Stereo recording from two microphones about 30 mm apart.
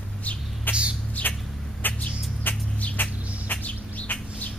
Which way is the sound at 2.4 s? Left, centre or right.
Left.